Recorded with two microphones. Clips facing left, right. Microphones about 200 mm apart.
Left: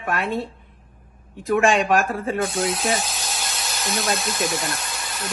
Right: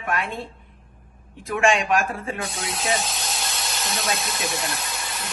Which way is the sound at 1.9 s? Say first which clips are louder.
Left 3 dB; 45° left (ahead or behind).